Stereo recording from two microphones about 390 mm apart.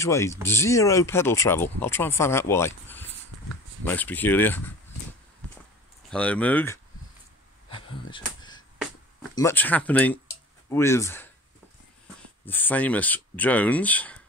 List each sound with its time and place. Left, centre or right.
0.0 s speech: centre
6.0 s speech: centre
8.2 s a sound: centre
9.3 s speech: centre
12.4 s speech: centre